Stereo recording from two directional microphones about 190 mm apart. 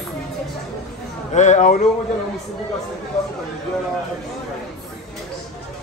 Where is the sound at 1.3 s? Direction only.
40° left (ahead or behind).